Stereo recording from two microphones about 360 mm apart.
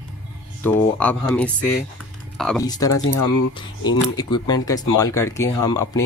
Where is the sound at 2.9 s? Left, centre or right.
Left.